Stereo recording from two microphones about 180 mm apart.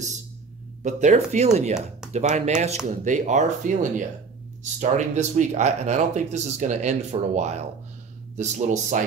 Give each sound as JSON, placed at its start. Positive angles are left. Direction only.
{"t": 0.8, "sound": "speech", "side_deg": -40}
{"t": 4.7, "sound": "speech", "side_deg": -40}